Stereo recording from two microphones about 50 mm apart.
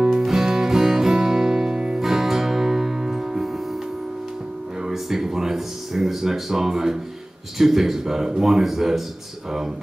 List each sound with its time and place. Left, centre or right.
0.1 s music: centre
4.8 s a sound: centre
7.5 s speech: centre